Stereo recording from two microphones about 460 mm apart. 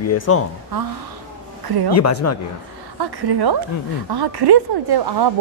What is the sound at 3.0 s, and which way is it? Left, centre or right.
Speech, right.